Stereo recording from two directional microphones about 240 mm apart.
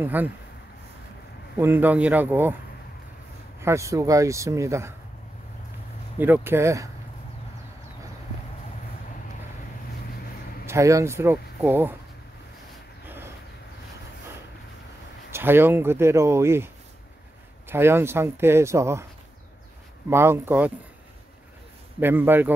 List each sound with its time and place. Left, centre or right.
0.0 s a man's voice: centre
1.6 s a man's voice: centre
3.6 s a man's voice: centre
6.1 s a man's voice: centre
10.7 s a man's voice: centre
13.0 s a sound: centre
15.3 s a man's voice: centre
20.1 s a man's voice: centre
22.0 s a man's voice: centre